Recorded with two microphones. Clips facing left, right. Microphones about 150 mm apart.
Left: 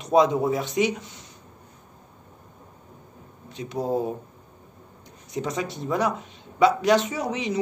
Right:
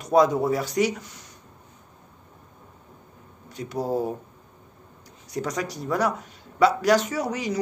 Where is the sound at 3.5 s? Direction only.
20° left (ahead or behind).